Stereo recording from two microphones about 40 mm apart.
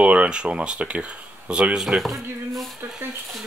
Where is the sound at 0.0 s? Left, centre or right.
Right.